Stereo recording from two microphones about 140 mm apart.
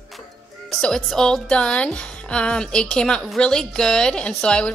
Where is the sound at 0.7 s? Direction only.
5° left (ahead or behind).